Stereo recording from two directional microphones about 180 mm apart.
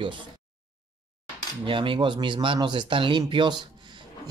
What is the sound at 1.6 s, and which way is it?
Speech, 30° right (ahead or behind).